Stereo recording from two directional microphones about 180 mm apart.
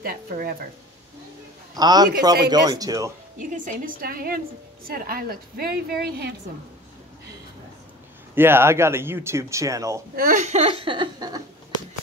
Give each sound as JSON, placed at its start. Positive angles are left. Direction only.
{"t": 0.0, "sound": "a woman's voice", "side_deg": -55}
{"t": 1.8, "sound": "speech", "side_deg": -20}
{"t": 3.3, "sound": "a woman's voice", "side_deg": -45}
{"t": 8.4, "sound": "speech", "side_deg": -15}
{"t": 10.1, "sound": "a woman's voice", "side_deg": -50}